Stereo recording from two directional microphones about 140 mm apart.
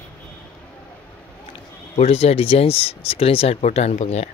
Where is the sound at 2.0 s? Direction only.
45° left (ahead or behind).